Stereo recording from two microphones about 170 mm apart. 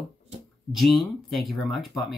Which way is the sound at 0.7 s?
Centre (ahead or behind).